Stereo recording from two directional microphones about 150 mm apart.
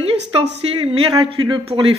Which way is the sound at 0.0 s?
40° right (ahead or behind).